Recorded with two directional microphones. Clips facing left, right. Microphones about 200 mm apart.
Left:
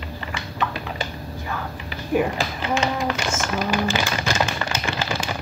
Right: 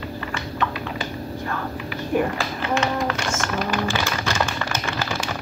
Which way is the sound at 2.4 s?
15° left (ahead or behind).